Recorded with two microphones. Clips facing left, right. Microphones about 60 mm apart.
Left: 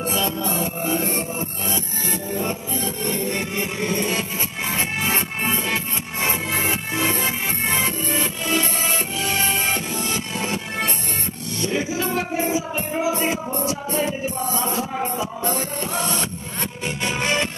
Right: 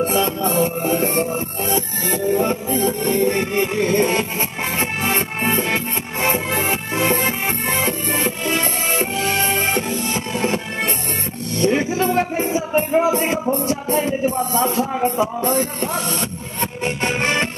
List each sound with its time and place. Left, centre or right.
0.0 s music: right